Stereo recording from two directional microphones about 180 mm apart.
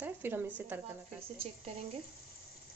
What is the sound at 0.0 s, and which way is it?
Speech, 10° right (ahead or behind).